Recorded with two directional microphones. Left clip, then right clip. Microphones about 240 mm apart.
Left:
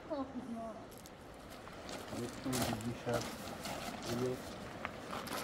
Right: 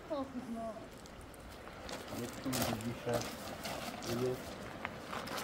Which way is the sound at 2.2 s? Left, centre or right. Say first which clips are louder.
Right 1 dB; centre.